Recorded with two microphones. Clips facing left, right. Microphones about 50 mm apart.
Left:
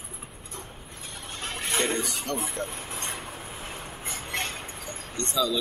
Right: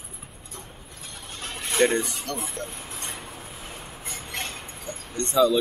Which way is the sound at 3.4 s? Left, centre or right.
Left.